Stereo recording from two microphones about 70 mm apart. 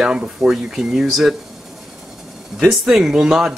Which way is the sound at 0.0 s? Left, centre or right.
Centre.